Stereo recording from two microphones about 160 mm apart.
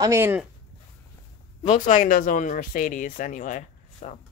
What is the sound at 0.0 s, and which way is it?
Speech, 15° right (ahead or behind).